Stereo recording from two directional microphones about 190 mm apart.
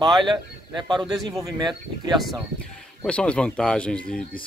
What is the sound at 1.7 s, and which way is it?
Speech, centre (ahead or behind).